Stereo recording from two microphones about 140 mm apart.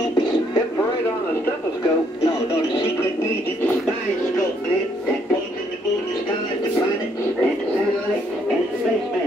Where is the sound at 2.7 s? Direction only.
20° left (ahead or behind).